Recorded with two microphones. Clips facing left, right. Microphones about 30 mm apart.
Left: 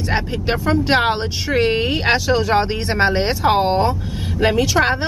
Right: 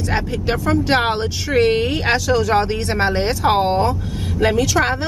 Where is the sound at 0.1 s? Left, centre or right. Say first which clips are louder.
Left 1 dB; centre.